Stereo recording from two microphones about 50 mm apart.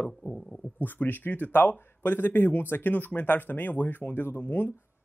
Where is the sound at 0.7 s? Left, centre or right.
Left.